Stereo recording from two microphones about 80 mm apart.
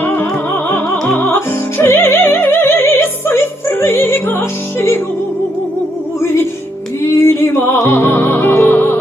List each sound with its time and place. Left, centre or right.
0.0 s music: left
6.1 s music: left